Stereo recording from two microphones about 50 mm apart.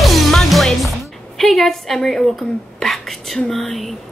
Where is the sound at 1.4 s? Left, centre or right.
Centre.